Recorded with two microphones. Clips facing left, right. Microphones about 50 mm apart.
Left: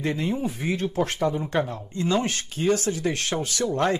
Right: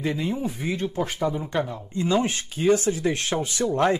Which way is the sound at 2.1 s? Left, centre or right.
Centre.